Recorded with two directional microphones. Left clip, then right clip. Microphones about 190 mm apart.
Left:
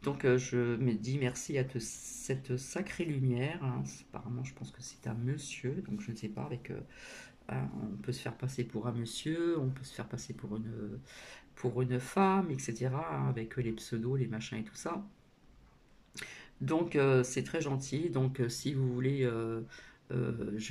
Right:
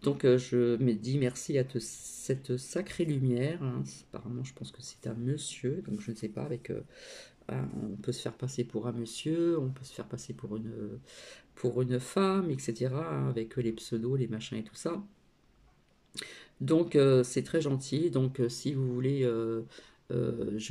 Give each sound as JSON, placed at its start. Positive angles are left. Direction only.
{"t": 0.0, "sound": "speech", "side_deg": -20}
{"t": 11.6, "sound": "speech", "side_deg": -20}
{"t": 16.2, "sound": "speech", "side_deg": -20}